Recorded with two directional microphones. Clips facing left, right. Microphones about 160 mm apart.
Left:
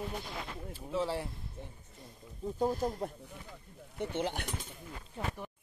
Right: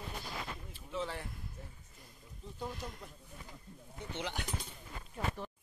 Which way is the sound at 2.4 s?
40° left (ahead or behind).